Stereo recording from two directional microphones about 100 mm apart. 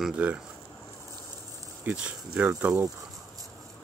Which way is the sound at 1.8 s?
15° right (ahead or behind).